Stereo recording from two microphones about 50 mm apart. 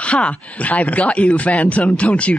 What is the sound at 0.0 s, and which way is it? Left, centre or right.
Speech, left.